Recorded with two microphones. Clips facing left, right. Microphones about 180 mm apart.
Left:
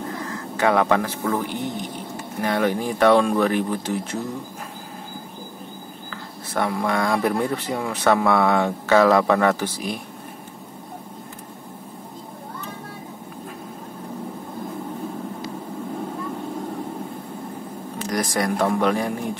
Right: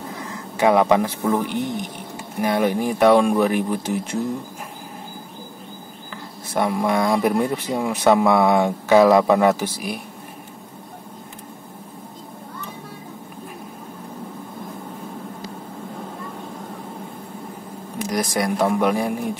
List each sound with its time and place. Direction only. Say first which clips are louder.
0.6 s speech: right 3 dB; 15° right (ahead or behind)
6.5 s speech: right 3 dB; 15° right (ahead or behind)
17.9 s speech: right 1 dB; 10° right (ahead or behind)